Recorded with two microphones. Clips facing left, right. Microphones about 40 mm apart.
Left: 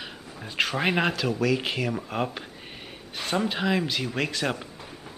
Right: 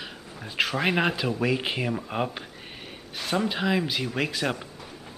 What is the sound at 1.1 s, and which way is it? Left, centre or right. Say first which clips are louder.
Speech: left 1 dB; centre.